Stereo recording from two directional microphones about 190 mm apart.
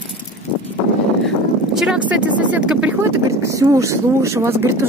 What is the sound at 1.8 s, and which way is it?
Speech, 5° right (ahead or behind).